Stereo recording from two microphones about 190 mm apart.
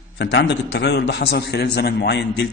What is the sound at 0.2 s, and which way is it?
A man's voice, 65° left (ahead or behind).